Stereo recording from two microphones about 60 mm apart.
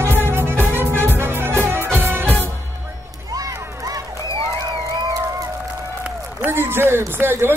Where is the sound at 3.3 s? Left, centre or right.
Right.